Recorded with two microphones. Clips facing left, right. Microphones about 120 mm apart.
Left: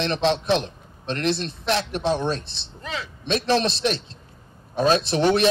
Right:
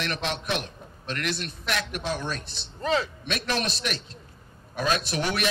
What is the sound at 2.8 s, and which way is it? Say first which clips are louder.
Speech: right 7 dB; 40° right (ahead or behind).